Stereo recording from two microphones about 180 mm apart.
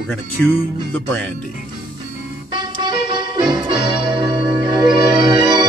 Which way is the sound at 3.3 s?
25° right (ahead or behind).